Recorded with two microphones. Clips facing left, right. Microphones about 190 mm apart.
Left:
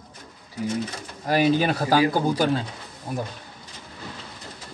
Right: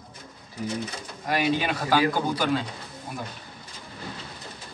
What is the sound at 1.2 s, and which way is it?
A man's voice, 35° left (ahead or behind).